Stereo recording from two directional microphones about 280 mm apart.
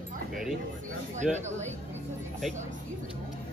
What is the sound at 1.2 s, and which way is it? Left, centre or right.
Speech, right.